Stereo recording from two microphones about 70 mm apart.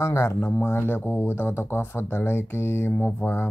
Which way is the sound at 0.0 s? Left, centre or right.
Left.